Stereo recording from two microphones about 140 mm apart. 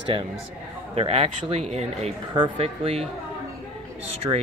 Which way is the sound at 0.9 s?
45° right (ahead or behind).